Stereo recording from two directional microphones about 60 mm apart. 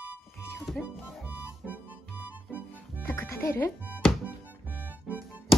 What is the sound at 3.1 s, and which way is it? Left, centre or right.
Music, left.